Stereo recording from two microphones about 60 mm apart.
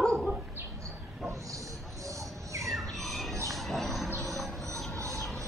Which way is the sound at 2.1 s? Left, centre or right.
Right.